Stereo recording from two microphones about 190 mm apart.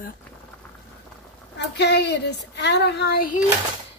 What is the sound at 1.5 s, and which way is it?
Speech, 60° left (ahead or behind).